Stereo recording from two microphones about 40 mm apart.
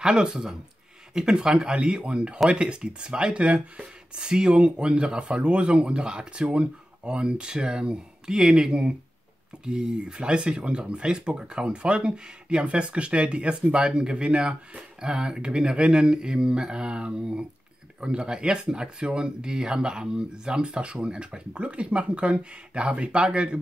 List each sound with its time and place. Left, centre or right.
0.0 s speech: centre